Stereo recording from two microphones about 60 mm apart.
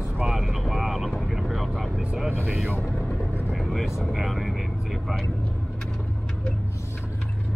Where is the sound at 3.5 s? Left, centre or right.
Centre.